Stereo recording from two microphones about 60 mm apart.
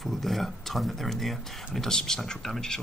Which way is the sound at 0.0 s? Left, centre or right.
Centre.